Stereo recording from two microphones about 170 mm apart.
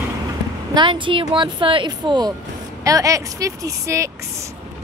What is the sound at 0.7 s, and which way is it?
Speech, 30° right (ahead or behind).